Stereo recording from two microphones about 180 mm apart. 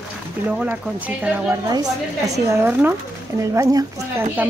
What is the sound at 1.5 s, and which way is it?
A woman's voice, 20° right (ahead or behind).